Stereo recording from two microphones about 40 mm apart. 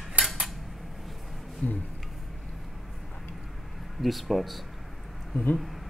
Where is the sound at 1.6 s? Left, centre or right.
Left.